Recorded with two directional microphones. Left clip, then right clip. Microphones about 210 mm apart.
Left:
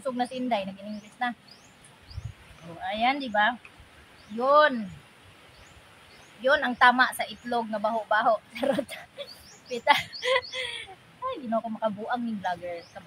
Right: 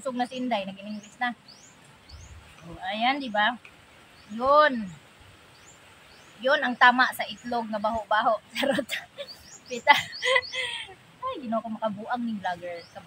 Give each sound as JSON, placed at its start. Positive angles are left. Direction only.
{"t": 0.0, "sound": "a woman's voice", "side_deg": 5}
{"t": 2.8, "sound": "a woman's voice", "side_deg": 5}
{"t": 6.4, "sound": "a woman's voice", "side_deg": 5}